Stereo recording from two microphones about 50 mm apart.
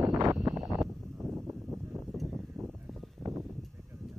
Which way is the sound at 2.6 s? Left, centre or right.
Right.